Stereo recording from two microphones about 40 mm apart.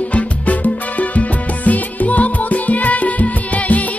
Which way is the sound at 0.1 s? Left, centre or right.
Left.